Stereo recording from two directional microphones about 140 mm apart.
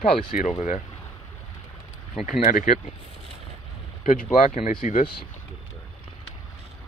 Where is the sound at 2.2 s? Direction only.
75° left (ahead or behind).